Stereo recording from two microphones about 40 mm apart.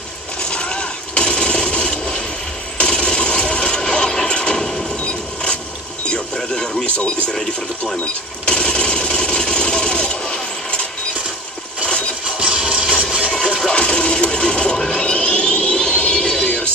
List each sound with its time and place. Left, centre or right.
0.4 s a sound: left
4.6 s train: centre
4.9 s train: left
6.3 s radio: centre
7.8 s sewing machine: left
12.4 s music: right
13.6 s music: left
14.9 s a sound: left